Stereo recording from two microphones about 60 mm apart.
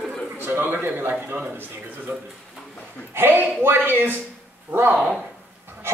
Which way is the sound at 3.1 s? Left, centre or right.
Right.